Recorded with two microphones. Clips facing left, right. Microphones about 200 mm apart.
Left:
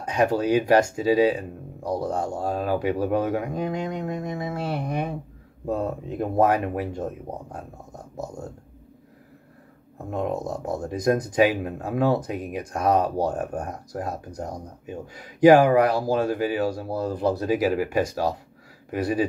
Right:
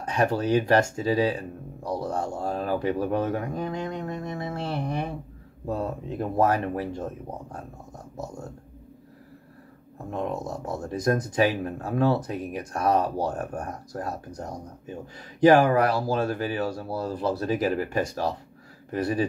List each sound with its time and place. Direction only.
0.0 s speech: 15° left (ahead or behind)
10.1 s speech: 15° left (ahead or behind)